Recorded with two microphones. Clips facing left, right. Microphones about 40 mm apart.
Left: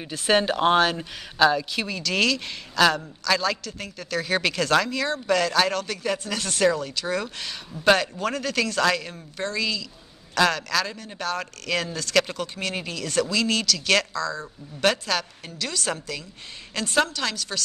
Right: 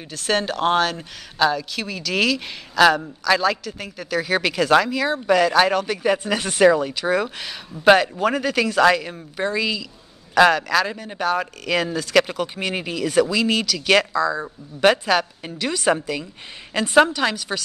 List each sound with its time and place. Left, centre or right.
0.0 s a woman's voice: centre